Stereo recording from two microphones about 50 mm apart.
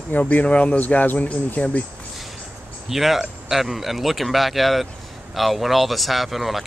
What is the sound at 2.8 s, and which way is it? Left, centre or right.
Speech, centre.